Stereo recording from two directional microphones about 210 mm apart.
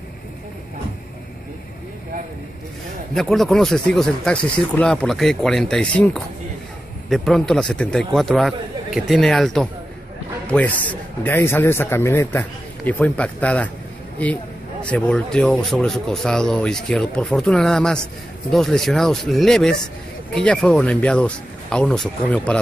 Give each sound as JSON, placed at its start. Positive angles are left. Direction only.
{"t": 3.2, "sound": "a man's voice", "side_deg": 0}